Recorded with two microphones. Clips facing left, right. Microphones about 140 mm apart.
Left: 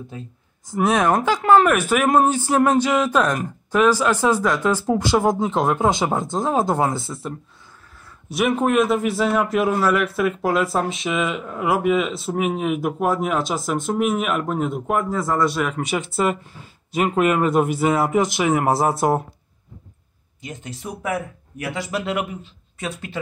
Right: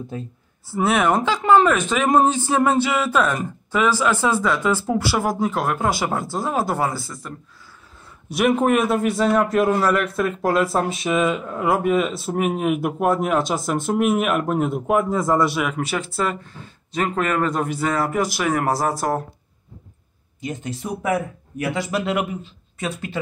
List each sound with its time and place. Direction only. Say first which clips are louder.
0.7 s speech: left 1 dB; 15° left (ahead or behind)
6.8 s a man's voice: left 2 dB; centre (ahead or behind)
8.3 s a man's voice: right 2 dB; centre (ahead or behind)
15.0 s a man's voice: right 3 dB; 20° right (ahead or behind)
15.4 s a man's voice: even; 5° right (ahead or behind)
20.4 s a man's voice: right 5 dB; 40° right (ahead or behind)